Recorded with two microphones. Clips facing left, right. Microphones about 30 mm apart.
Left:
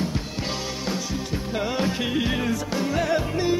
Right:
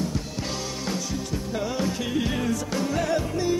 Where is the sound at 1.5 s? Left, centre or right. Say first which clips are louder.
Left 2 dB; left.